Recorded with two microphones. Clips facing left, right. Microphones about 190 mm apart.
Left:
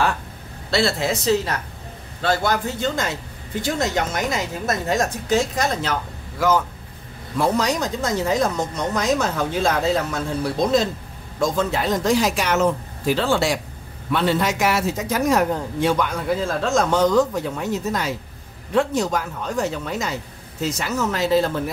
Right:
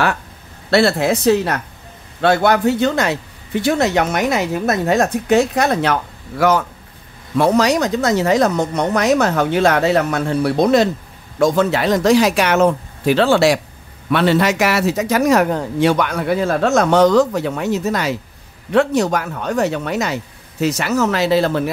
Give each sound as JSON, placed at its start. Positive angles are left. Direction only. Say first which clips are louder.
{"t": 0.7, "sound": "a woman's voice", "louder": "right 7 dB", "side_deg": -60}